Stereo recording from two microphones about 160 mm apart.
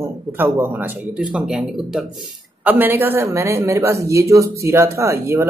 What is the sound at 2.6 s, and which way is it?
Speech, 10° right (ahead or behind).